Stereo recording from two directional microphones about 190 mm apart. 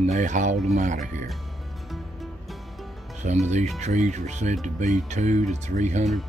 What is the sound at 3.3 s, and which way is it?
Speech, 35° right (ahead or behind).